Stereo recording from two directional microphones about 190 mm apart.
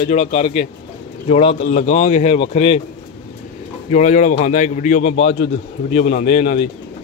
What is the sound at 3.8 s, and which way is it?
A man's voice, 40° left (ahead or behind).